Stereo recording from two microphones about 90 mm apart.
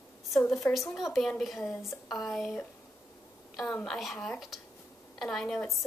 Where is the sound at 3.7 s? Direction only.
10° left (ahead or behind).